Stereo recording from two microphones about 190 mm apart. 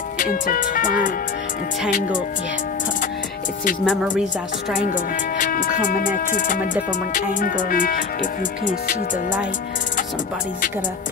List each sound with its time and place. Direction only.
0.2 s speech: 45° left (ahead or behind)
3.8 s speech: centre (ahead or behind)
4.7 s speech: 45° left (ahead or behind)